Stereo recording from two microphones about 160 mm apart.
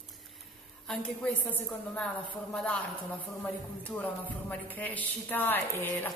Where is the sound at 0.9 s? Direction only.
5° left (ahead or behind).